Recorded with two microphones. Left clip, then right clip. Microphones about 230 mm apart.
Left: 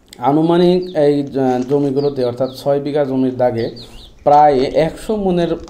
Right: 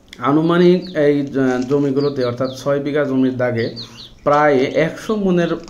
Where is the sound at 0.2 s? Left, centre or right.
Centre.